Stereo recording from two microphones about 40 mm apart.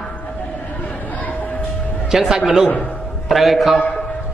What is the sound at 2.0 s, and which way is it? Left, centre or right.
Speech, centre.